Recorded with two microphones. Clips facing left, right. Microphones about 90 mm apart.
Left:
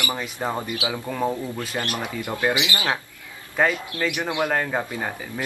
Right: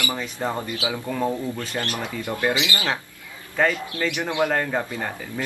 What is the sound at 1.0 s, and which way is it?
Speech, 5° left (ahead or behind).